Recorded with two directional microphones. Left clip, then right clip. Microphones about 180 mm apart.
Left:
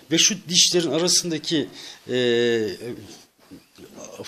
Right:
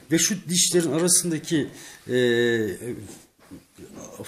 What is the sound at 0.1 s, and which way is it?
A man's voice, 30° left (ahead or behind).